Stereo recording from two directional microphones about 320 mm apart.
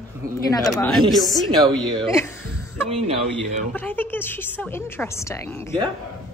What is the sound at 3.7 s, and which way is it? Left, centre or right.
A woman's voice, centre.